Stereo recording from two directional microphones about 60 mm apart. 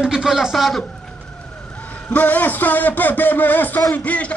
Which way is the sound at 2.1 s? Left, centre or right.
Left.